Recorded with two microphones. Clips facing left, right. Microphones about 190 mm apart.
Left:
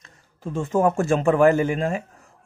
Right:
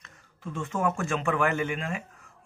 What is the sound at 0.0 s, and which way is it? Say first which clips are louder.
Speech: left 6 dB; 35° left (ahead or behind).